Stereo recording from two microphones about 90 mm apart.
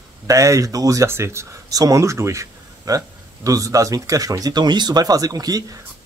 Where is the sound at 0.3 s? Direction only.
35° right (ahead or behind).